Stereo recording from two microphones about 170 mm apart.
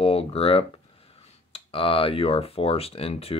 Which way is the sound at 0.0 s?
35° left (ahead or behind).